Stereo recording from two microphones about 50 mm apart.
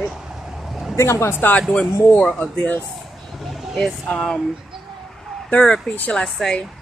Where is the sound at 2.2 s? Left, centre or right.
Centre.